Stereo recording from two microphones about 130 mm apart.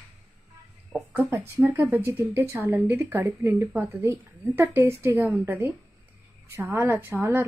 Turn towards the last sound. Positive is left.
turn(degrees=-15)  # may be behind; listen again after turning